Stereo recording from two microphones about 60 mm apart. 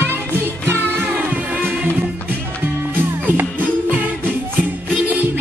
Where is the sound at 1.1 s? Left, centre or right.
Right.